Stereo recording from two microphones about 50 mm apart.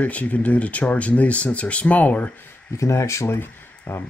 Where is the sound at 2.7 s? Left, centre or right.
Left.